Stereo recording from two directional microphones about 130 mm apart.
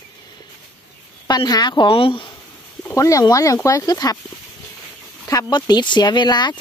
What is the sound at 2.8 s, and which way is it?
Speech, 25° left (ahead or behind).